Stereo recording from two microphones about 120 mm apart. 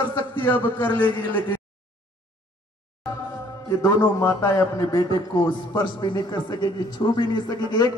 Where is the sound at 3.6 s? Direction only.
25° left (ahead or behind).